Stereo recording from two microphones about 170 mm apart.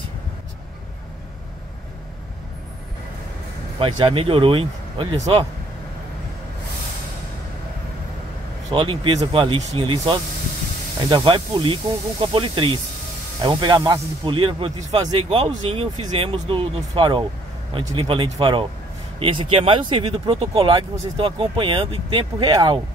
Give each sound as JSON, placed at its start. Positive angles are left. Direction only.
{"t": 3.8, "sound": "speech", "side_deg": -30}
{"t": 8.6, "sound": "speech", "side_deg": -30}